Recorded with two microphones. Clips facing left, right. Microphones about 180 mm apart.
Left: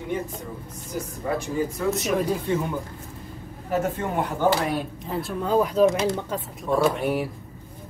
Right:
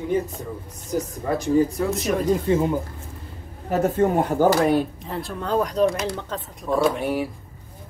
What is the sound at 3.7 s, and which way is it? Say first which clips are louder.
Speech: right 6 dB; 40° right (ahead or behind).